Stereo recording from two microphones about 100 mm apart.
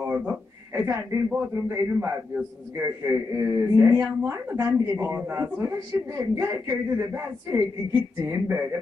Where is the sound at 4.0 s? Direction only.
20° right (ahead or behind).